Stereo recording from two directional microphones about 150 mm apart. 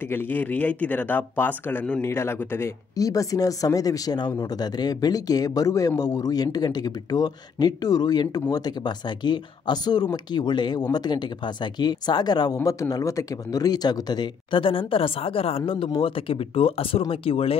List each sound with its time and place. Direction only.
0.1 s speech: 15° left (ahead or behind); by 17.6 s 40° left (ahead or behind)